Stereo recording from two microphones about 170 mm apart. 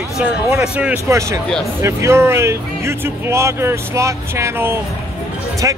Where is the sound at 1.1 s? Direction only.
15° right (ahead or behind).